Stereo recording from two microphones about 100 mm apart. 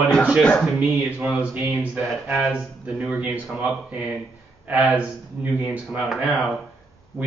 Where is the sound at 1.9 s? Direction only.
10° right (ahead or behind).